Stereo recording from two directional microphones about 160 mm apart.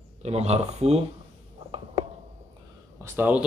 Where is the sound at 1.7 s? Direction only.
30° right (ahead or behind).